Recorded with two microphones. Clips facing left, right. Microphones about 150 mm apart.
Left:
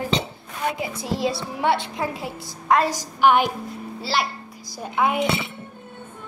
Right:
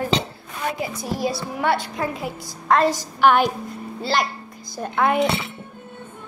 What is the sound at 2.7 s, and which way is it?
Speech, 15° left (ahead or behind).